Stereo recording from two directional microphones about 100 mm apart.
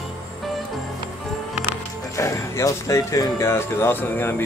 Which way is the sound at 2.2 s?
30° left (ahead or behind).